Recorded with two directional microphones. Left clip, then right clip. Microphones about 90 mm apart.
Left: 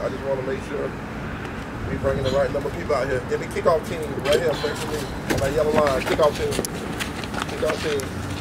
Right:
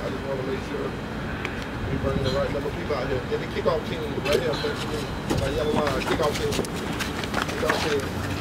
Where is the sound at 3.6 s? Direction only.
45° left (ahead or behind).